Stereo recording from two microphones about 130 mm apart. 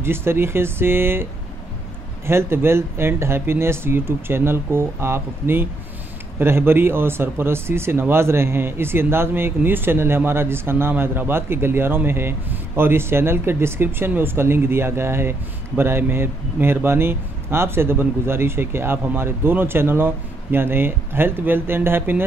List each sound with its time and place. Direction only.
0.0 s speech: 20° right (ahead or behind)